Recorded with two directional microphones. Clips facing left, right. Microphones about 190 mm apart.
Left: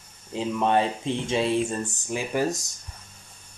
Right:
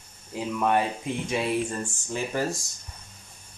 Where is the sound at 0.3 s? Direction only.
25° left (ahead or behind).